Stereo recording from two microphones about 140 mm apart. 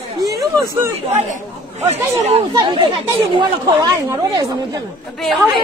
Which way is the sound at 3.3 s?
25° right (ahead or behind).